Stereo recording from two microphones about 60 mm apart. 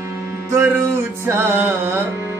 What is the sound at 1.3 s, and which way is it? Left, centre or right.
Music, right.